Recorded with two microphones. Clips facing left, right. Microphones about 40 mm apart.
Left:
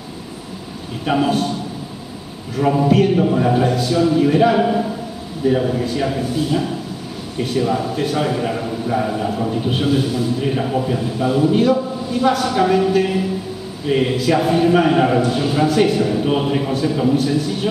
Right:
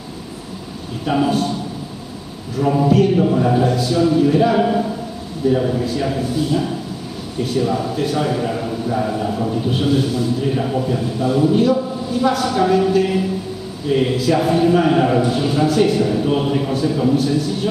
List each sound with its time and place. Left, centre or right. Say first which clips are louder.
1.1 s a man's voice: even; centre
2.7 s a man's voice: right 1 dB; centre
3.6 s a man's voice: even; centre